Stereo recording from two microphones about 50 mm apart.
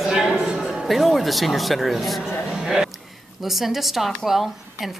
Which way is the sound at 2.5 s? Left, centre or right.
Centre.